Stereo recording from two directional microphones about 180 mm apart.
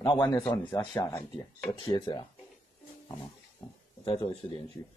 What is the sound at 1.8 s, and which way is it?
Speech, 25° left (ahead or behind).